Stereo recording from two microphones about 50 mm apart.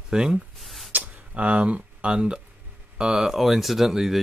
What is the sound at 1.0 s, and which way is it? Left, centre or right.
Speech, right.